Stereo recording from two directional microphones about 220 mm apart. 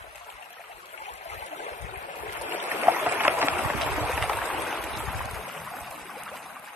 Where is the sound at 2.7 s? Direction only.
10° right (ahead or behind).